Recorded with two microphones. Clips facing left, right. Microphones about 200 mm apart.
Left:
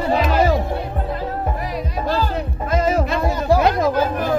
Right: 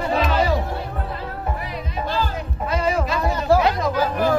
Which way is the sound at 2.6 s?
45° left (ahead or behind).